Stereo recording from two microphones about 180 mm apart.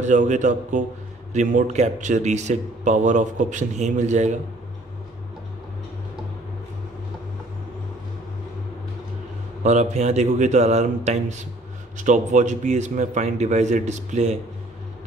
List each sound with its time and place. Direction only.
0.0 s a man's voice: 40° right (ahead or behind)
9.6 s a man's voice: 40° right (ahead or behind)